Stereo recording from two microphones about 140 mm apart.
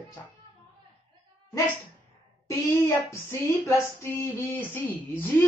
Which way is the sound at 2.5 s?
20° left (ahead or behind).